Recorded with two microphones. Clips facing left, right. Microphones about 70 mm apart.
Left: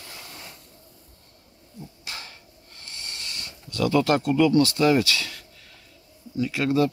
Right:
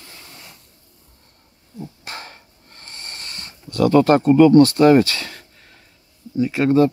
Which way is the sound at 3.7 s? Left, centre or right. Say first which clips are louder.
Right 7 dB; right.